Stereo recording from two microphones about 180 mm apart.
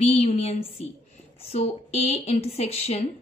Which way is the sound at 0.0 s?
35° left (ahead or behind).